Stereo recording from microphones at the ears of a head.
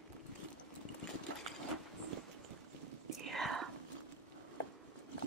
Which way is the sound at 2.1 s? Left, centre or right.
Right.